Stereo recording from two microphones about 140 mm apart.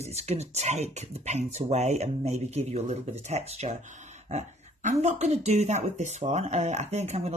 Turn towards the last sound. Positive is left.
turn(degrees=-50)  # may be behind; listen again after turning